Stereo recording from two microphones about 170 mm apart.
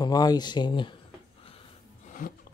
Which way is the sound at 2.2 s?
50° left (ahead or behind).